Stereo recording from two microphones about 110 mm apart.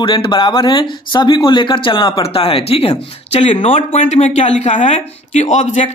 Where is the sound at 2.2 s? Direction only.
60° left (ahead or behind).